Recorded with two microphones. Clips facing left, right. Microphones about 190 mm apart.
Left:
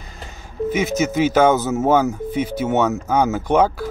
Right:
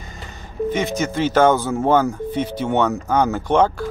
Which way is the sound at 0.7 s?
5° left (ahead or behind).